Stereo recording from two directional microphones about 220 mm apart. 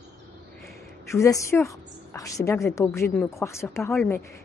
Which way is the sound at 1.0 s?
15° left (ahead or behind).